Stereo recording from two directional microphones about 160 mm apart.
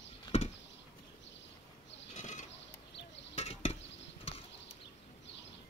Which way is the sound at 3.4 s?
40° left (ahead or behind).